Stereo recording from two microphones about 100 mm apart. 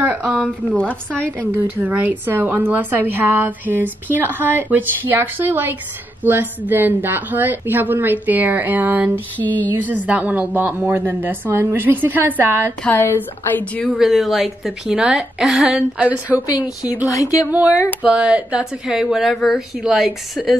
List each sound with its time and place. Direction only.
0.0 s a sound: 15° right (ahead or behind)
0.7 s a woman's voice: 15° left (ahead or behind)
1.5 s a woman's voice: 20° right (ahead or behind)
9.4 s a woman's voice: 15° left (ahead or behind)
9.7 s a woman's voice: 15° right (ahead or behind)
12.9 s speech: 20° left (ahead or behind)
13.8 s a woman's voice: centre (ahead or behind)
16.4 s speech: 35° left (ahead or behind)
17.5 s a woman's voice: 15° right (ahead or behind)